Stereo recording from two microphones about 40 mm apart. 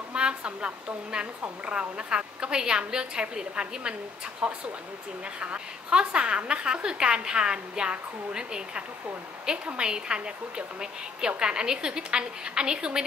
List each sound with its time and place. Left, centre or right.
0.1 s a woman's voice: right